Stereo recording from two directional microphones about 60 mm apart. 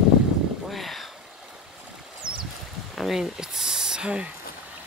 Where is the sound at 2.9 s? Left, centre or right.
Centre.